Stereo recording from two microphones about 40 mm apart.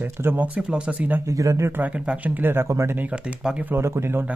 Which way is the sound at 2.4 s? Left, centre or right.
Right.